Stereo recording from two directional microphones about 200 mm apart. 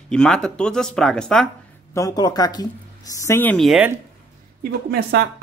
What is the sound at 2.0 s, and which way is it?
Speech, 20° left (ahead or behind).